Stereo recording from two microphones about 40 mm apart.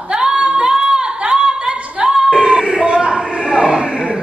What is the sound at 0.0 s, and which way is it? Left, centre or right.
Singing, right.